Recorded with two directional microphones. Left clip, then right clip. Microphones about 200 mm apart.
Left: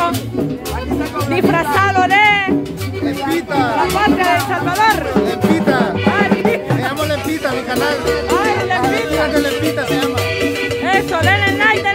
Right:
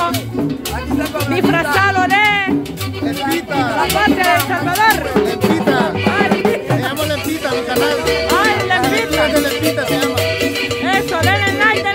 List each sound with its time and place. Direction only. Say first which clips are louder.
1.3 s music: left 1 dB; centre (ahead or behind)
3.5 s music: left 1 dB; centre (ahead or behind)
6.2 s music: even; 35° right (ahead or behind)
7.7 s music: right 2 dB; centre (ahead or behind)
8.3 s music: right 2 dB; 15° right (ahead or behind)
10.9 s music: left 1 dB; centre (ahead or behind)